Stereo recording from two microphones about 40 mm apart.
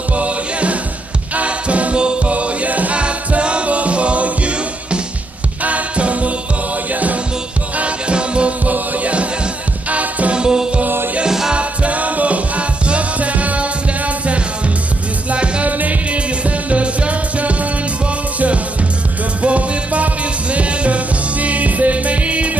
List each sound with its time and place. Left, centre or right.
0.1 s music: right
7.7 s music: right
8.6 s music: right
10.3 s music: centre
11.5 s music: right
19.4 s music: right